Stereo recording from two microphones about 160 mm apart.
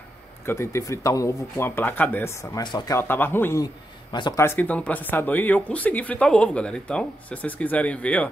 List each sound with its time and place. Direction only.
0.5 s speech: 20° left (ahead or behind)
2.6 s speech: 30° left (ahead or behind)
3.0 s speech: 15° left (ahead or behind)
3.6 s a man's voice: 25° left (ahead or behind)
4.4 s speech: 15° left (ahead or behind)